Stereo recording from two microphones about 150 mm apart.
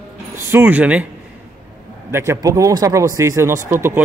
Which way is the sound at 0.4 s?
15° right (ahead or behind).